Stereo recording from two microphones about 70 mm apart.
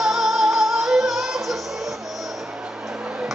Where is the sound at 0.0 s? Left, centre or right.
Centre.